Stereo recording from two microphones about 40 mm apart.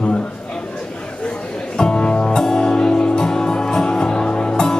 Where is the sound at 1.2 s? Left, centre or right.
Left.